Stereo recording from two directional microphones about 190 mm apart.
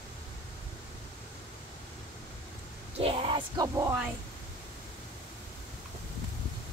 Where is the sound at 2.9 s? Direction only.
30° right (ahead or behind).